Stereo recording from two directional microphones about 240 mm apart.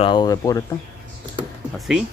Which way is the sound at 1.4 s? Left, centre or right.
Centre.